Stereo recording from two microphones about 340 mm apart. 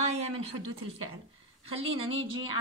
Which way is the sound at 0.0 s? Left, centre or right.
Centre.